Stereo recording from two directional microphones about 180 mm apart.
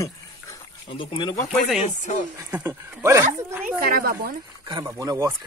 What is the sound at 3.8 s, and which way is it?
Speech, 55° right (ahead or behind).